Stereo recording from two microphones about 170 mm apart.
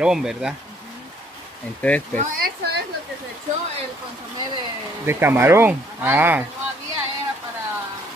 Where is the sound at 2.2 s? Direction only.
55° right (ahead or behind).